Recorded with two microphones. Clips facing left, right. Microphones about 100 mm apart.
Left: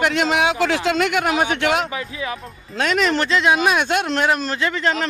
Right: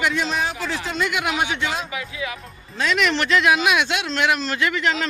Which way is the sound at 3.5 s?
45° left (ahead or behind).